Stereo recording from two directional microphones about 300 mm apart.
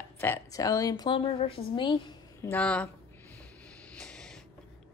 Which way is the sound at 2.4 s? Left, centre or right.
Centre.